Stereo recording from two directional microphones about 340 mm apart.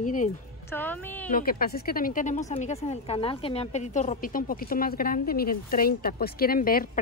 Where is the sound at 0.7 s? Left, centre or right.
Centre.